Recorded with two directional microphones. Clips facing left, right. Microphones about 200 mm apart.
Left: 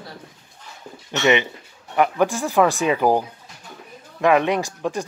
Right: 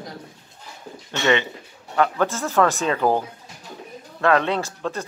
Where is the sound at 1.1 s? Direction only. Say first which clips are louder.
Left 2 dB; 15° left (ahead or behind).